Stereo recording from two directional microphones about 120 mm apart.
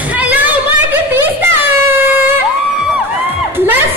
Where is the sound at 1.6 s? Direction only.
15° right (ahead or behind).